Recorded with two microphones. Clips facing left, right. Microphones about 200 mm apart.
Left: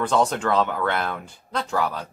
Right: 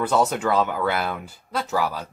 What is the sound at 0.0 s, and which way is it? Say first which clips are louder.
Speech: even; 5° right (ahead or behind).